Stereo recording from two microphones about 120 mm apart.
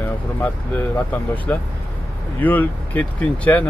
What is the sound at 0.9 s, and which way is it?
Speech, 15° left (ahead or behind).